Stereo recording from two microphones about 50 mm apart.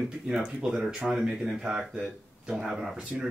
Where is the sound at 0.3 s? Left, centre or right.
Centre.